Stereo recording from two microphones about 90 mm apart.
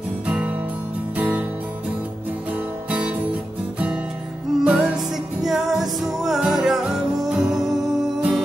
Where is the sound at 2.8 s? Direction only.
15° right (ahead or behind).